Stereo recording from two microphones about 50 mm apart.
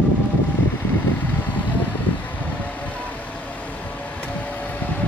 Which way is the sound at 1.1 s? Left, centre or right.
Left.